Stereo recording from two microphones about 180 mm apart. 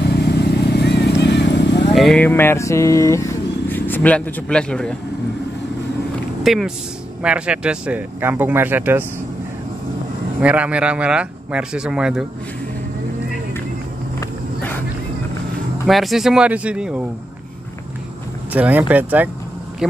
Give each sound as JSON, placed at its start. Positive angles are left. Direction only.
{"t": 0.0, "sound": "vehicle", "side_deg": 65}
{"t": 2.0, "sound": "vehicle", "side_deg": 5}
{"t": 6.4, "sound": "speech", "side_deg": 0}
{"t": 10.4, "sound": "speech", "side_deg": -10}
{"t": 15.9, "sound": "speech", "side_deg": 0}
{"t": 18.5, "sound": "speech", "side_deg": -10}
{"t": 19.8, "sound": "a sound", "side_deg": -5}